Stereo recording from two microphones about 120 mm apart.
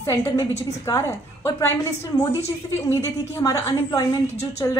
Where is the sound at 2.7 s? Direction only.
25° left (ahead or behind).